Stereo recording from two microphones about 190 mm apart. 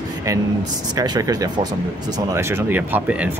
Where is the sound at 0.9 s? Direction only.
20° right (ahead or behind).